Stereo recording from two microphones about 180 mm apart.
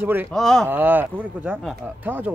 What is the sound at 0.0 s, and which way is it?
Speech, 10° right (ahead or behind).